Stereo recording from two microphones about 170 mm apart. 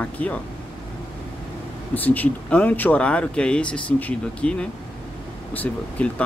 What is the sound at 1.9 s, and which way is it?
Speech, 10° left (ahead or behind).